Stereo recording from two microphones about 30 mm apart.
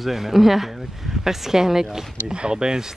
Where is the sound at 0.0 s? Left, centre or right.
Centre.